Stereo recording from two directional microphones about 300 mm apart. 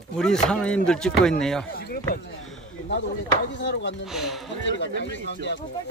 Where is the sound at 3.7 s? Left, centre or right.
Left.